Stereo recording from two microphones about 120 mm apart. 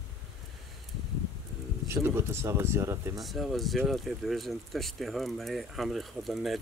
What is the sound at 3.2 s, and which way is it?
Speech, centre (ahead or behind).